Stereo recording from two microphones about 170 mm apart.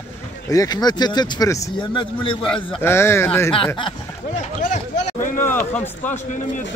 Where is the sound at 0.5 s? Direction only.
20° left (ahead or behind).